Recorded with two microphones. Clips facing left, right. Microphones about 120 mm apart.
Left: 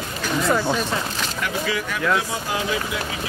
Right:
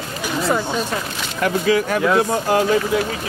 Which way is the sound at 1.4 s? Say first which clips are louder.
Right 10 dB; 40° right (ahead or behind).